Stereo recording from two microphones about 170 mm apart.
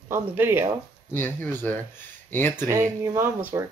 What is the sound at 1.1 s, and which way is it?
Speech, 10° left (ahead or behind).